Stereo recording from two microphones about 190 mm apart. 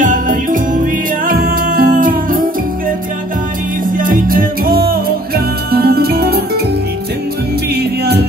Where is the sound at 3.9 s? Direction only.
45° right (ahead or behind).